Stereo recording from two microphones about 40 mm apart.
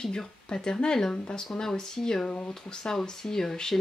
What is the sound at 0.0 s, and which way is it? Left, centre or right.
Speech, centre.